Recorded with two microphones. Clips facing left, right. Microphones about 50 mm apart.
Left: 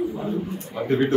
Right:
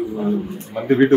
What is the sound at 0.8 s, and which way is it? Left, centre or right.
Speech, right.